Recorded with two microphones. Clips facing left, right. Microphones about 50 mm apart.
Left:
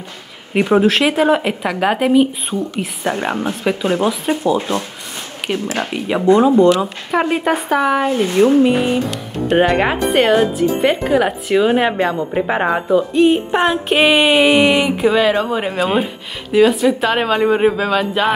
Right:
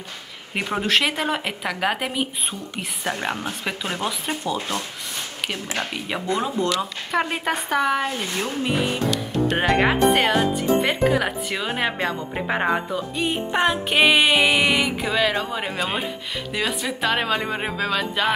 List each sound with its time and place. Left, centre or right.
0.6 s speech: centre
3.1 s speech: centre
4.6 s speech: left
6.2 s speech: centre
8.1 s speech: centre
8.6 s speech: centre